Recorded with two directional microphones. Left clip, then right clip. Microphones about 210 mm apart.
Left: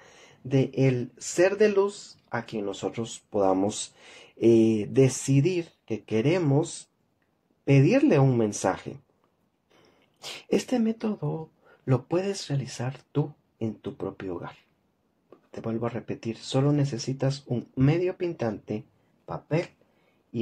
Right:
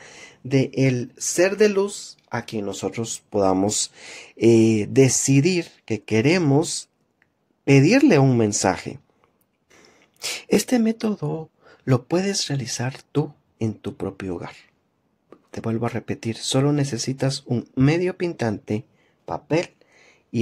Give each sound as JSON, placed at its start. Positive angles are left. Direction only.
{"t": 0.0, "sound": "speech", "side_deg": -35}